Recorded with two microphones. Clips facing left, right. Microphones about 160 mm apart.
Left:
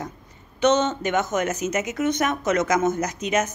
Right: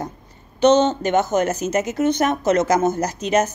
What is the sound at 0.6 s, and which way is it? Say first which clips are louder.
Speech: right 5 dB; 30° right (ahead or behind).